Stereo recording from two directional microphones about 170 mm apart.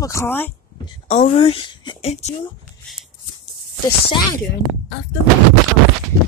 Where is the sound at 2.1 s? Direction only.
40° left (ahead or behind).